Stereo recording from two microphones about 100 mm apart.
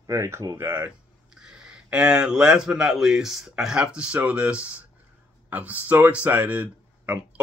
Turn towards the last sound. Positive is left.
turn(degrees=-15)  # may be behind; listen again after turning